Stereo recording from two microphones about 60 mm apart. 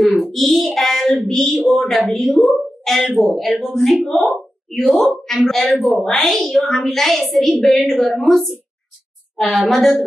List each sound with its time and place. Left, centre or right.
0.0 s hands: centre
1.2 s a sound: centre
1.9 s a woman's voice: centre
4.1 s speech: left
5.2 s a woman's voice: centre